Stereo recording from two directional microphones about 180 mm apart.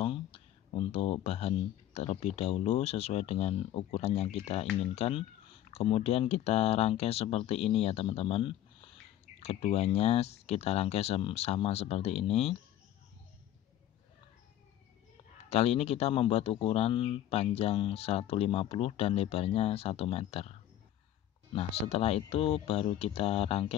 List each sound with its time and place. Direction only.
0.0 s a sound: 30° left (ahead or behind)
2.0 s speech: 35° left (ahead or behind)
15.5 s speech: 35° left (ahead or behind)
21.5 s speech: 35° left (ahead or behind)